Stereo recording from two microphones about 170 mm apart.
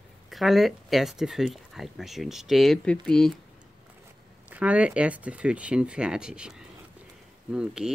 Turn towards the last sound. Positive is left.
turn(degrees=-5)  # may be behind; listen again after turning